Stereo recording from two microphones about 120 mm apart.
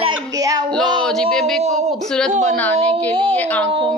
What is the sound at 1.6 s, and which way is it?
Speech, 70° right (ahead or behind).